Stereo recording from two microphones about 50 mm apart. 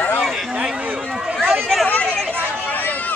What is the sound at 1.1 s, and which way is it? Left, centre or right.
Run, centre.